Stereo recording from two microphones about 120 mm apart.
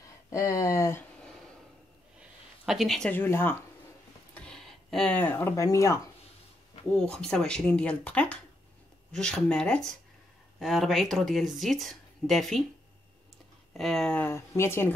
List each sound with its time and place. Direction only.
0.3 s speech: 25° left (ahead or behind)
2.1 s a sound: 5° right (ahead or behind)
3.1 s speech: 20° left (ahead or behind)
4.3 s speech: 5° left (ahead or behind); by 5.9 s 25° left (ahead or behind)
6.9 s speech: 5° left (ahead or behind)
13.7 s speech: centre (ahead or behind)
14.2 s speech: 20° left (ahead or behind)